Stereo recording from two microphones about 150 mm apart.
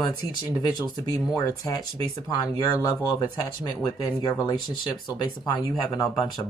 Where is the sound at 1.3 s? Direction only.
25° left (ahead or behind).